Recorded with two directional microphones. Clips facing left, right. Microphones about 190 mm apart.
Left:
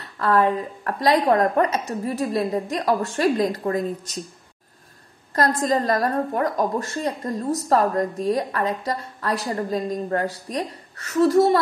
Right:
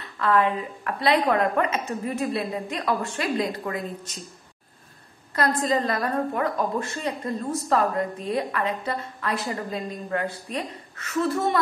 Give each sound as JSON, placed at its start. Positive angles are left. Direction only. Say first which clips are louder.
{"t": 0.0, "sound": "a woman's voice", "louder": "left 2 dB", "side_deg": 40}
{"t": 5.3, "sound": "a woman's voice", "louder": "left 2 dB", "side_deg": 45}